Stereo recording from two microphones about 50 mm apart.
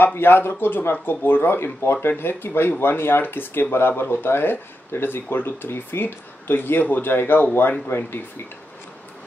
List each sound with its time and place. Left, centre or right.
0.0 s speech: left